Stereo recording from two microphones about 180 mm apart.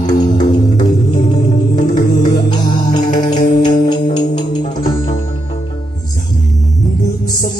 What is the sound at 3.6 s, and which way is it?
Music, 25° left (ahead or behind).